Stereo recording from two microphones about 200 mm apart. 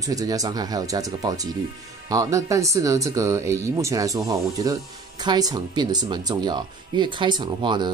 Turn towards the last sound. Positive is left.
turn(degrees=-20)  # may be behind; listen again after turning